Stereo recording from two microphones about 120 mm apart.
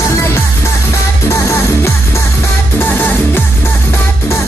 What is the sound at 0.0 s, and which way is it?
Music, 20° left (ahead or behind).